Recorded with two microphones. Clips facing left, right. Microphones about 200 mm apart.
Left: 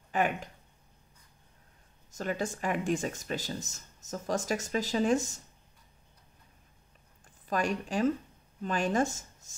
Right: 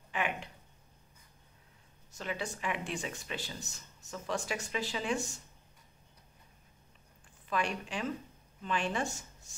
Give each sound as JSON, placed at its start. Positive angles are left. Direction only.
{"t": 0.1, "sound": "speech", "side_deg": 40}
{"t": 2.0, "sound": "speech", "side_deg": 45}
{"t": 7.4, "sound": "a woman's voice", "side_deg": 40}